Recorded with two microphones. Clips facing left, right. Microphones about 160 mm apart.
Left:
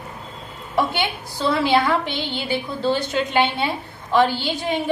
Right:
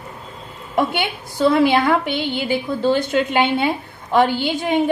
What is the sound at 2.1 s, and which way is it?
Speech, 10° right (ahead or behind).